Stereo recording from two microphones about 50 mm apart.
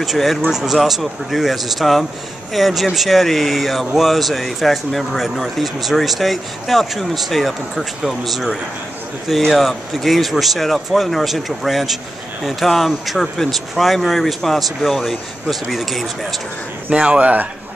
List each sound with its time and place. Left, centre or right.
0.0 s speech: centre
16.9 s speech: right